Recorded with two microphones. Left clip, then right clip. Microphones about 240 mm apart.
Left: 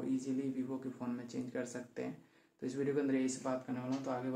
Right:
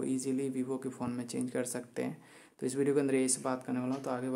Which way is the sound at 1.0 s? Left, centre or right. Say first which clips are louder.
Right 5 dB; right.